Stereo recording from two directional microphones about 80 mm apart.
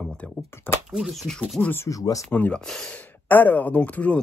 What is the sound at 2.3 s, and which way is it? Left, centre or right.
Speech, left.